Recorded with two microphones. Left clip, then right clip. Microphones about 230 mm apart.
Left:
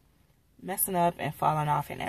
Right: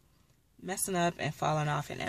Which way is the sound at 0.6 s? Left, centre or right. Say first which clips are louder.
Left 4 dB; centre.